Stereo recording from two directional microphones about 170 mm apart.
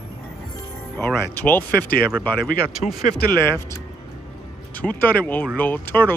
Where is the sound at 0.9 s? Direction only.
10° left (ahead or behind).